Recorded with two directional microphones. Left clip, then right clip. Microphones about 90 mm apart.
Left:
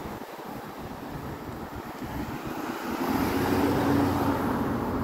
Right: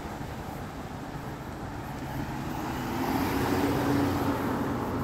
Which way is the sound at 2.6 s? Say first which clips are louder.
Left 1 dB; 25° left (ahead or behind).